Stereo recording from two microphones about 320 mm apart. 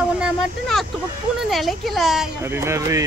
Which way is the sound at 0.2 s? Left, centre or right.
Centre.